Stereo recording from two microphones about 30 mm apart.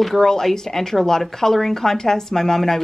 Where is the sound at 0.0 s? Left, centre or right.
Centre.